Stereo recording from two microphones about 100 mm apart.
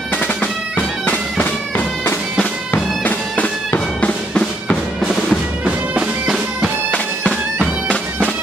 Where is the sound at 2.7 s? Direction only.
15° left (ahead or behind).